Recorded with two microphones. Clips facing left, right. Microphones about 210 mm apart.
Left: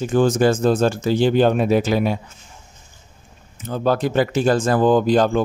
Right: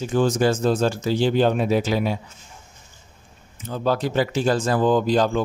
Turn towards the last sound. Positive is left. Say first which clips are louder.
# left 3 dB
turn(degrees=50)  # may be behind; listen again after turning